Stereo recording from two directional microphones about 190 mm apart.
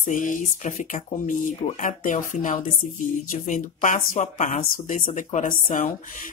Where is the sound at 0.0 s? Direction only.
45° left (ahead or behind).